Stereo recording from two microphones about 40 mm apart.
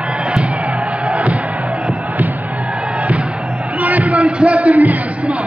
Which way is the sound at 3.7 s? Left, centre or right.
Right.